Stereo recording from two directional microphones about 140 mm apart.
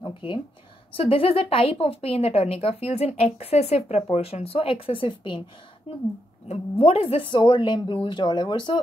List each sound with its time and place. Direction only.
0.0 s a sound: 35° left (ahead or behind)
0.9 s speech: 40° left (ahead or behind)
6.4 s speech: 50° left (ahead or behind); by 8.7 s 30° left (ahead or behind)